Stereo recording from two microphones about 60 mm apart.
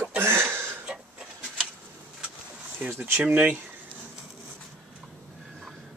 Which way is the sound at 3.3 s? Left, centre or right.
Right.